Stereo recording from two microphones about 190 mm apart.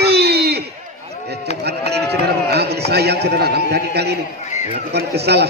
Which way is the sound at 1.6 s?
60° right (ahead or behind).